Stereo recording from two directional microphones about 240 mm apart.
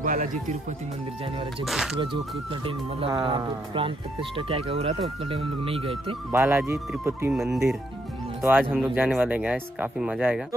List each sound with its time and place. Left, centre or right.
0.0 s speech: right
1.6 s speech: centre
2.6 s speech: right
6.3 s speech: centre